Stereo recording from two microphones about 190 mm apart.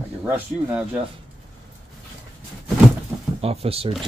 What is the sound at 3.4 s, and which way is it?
Speech, 30° right (ahead or behind).